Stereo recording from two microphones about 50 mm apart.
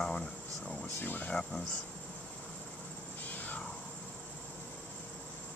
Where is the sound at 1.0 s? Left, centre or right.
Left.